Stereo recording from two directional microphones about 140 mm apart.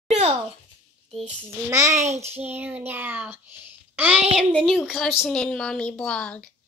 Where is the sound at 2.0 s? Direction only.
50° right (ahead or behind).